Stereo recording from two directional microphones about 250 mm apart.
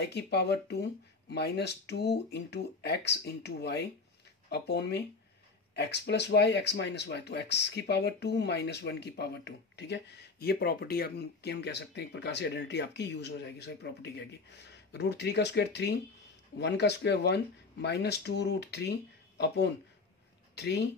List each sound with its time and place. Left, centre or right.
0.0 s speech: left